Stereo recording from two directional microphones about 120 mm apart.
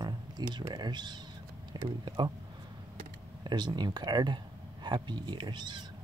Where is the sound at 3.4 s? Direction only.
35° right (ahead or behind).